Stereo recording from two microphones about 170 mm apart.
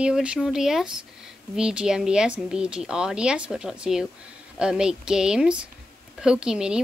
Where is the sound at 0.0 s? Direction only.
5° right (ahead or behind).